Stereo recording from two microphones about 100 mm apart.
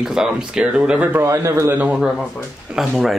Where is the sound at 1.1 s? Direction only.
30° right (ahead or behind).